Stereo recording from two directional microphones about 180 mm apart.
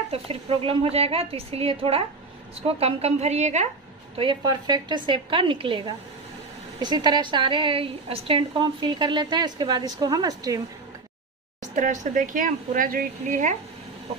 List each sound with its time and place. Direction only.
0.1 s a woman's voice: 35° right (ahead or behind)
4.2 s a woman's voice: 25° right (ahead or behind)
11.6 s speech: 45° right (ahead or behind)